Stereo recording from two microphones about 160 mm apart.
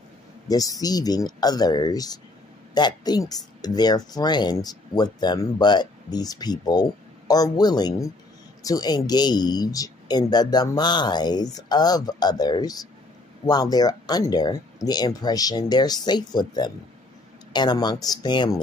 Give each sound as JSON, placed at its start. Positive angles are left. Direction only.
{"t": 0.5, "sound": "speech", "side_deg": 25}